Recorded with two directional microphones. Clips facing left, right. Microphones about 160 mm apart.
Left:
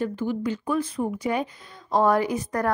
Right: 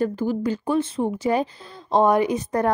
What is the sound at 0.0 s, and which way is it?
Speech, 40° right (ahead or behind).